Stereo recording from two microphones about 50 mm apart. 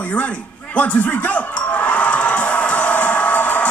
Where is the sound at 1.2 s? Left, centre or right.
Left.